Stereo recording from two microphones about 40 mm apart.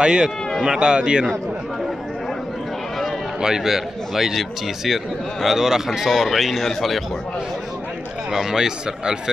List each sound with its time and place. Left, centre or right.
0.0 s speech: right
3.3 s a man's voice: centre
8.3 s a man's voice: centre